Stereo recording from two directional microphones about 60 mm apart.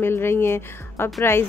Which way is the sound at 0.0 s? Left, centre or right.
Left.